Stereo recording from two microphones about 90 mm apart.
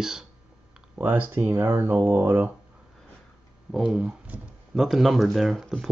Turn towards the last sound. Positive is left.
turn(degrees=-5)  # may be behind; listen again after turning